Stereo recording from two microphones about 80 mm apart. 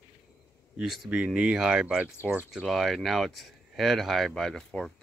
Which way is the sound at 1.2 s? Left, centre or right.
Centre.